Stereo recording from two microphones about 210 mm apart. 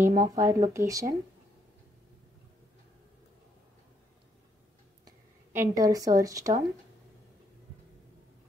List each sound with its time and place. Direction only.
0.0 s speech: 15° right (ahead or behind)
5.0 s speech: 15° right (ahead or behind)